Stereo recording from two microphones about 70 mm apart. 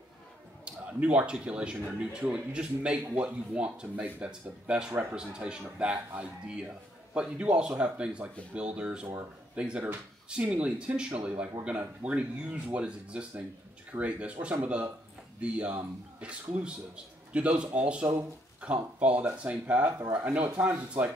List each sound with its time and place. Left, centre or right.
0.7 s speech: centre